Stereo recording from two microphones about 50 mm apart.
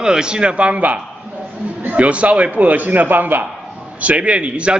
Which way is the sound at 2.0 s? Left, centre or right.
Right.